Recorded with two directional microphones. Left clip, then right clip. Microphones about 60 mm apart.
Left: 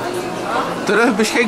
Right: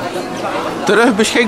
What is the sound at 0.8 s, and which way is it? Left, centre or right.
Speech, centre.